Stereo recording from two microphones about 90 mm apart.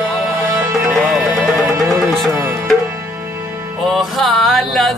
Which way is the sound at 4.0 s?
Centre (ahead or behind).